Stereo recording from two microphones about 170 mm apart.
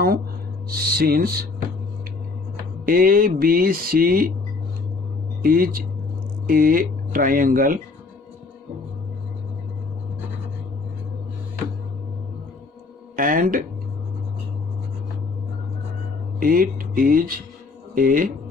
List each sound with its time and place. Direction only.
0.7 s speech: 65° right (ahead or behind)
2.8 s speech: 55° right (ahead or behind)
5.4 s speech: 55° right (ahead or behind)
13.1 s speech: 55° right (ahead or behind)
16.3 s speech: 55° right (ahead or behind)